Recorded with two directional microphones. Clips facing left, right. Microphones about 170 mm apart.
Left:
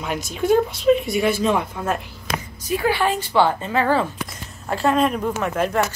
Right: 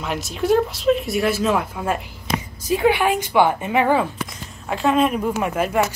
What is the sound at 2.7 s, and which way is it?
Speech, 20° right (ahead or behind).